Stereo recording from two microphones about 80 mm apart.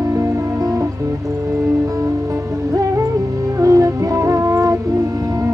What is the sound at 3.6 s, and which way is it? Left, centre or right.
Music, right.